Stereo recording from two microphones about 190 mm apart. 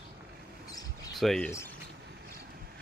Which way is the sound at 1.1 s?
Centre (ahead or behind).